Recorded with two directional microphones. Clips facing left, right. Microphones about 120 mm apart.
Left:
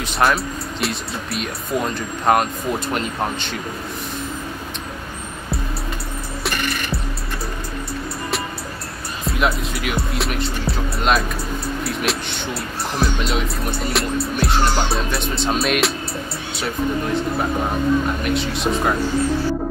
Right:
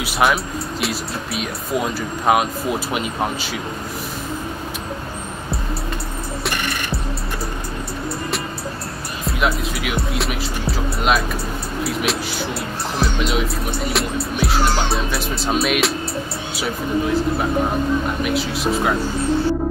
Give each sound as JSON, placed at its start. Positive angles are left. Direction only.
{"t": 0.0, "sound": "speech", "side_deg": -5}
{"t": 9.2, "sound": "speech", "side_deg": 0}
{"t": 18.2, "sound": "speech", "side_deg": -5}